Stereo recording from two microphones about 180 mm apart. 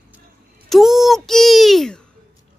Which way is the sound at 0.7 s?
Centre (ahead or behind).